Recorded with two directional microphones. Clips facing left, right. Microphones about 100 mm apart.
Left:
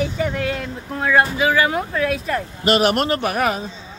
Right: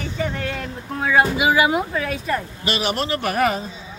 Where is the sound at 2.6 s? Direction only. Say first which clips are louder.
Left 6 dB; 50° left (ahead or behind).